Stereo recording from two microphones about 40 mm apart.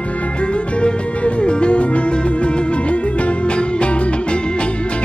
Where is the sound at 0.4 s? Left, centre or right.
Left.